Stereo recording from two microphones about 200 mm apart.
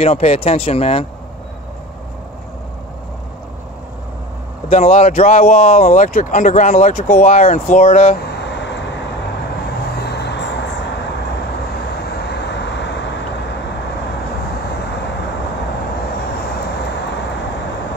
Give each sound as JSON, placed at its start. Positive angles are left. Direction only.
{"t": 0.0, "sound": "speech", "side_deg": 30}
{"t": 4.6, "sound": "speech", "side_deg": 35}
{"t": 8.3, "sound": "vehicle", "side_deg": 60}
{"t": 12.3, "sound": "vehicle", "side_deg": 60}